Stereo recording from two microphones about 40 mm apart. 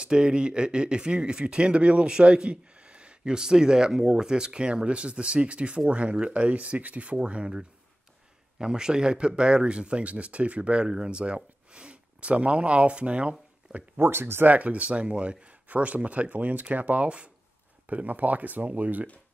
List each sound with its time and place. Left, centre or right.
0.0 s speech: right
7.2 s speech: right
13.9 s speech: right
14.4 s speech: right